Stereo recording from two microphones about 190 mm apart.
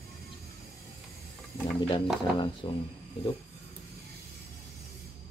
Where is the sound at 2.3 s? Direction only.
25° left (ahead or behind).